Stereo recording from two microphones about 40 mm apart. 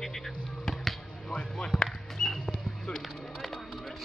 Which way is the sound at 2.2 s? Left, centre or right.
Centre.